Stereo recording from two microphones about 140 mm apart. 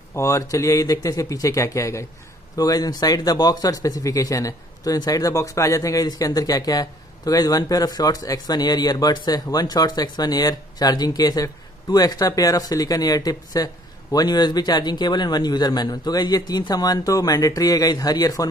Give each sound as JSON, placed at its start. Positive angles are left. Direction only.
{"t": 0.1, "sound": "speech", "side_deg": 20}